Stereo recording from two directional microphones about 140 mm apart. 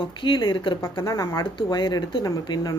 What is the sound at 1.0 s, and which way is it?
Speech, 20° left (ahead or behind).